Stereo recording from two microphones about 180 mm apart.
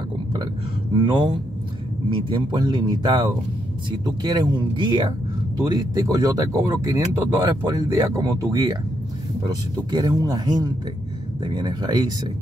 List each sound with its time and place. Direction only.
1.0 s speech: 25° right (ahead or behind)